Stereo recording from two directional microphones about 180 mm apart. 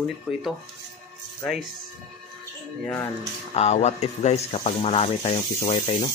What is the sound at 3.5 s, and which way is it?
Speech, 35° left (ahead or behind).